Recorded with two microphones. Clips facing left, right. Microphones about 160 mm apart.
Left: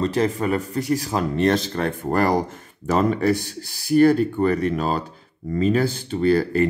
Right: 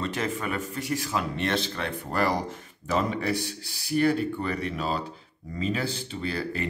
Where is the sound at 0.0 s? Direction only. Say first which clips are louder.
Left 9 dB; 35° left (ahead or behind).